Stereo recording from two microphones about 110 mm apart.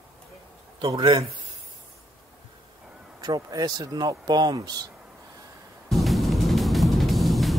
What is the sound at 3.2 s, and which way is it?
Speech, 35° right (ahead or behind).